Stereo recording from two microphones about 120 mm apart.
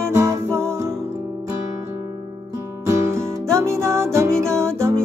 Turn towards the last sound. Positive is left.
turn(degrees=-25)  # may be behind; listen again after turning